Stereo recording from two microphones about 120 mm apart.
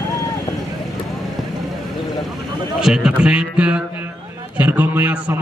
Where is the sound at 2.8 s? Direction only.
5° right (ahead or behind).